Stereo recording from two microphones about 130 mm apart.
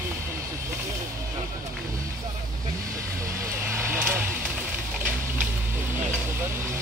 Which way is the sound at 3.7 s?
20° right (ahead or behind).